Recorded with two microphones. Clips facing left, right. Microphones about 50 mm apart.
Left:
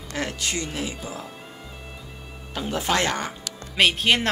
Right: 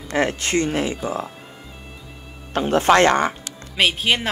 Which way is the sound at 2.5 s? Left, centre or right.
Right.